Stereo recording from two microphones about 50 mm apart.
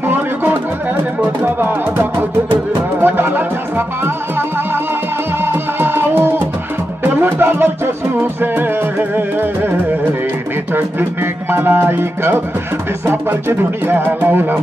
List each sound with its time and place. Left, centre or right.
0.0 s a sound: right
1.2 s speech: right
3.0 s music: right
10.7 s speech: right